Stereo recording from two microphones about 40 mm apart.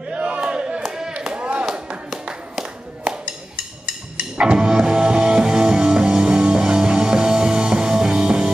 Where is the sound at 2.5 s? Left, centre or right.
Centre.